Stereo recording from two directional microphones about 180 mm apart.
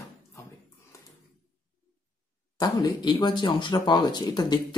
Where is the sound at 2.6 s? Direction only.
25° left (ahead or behind).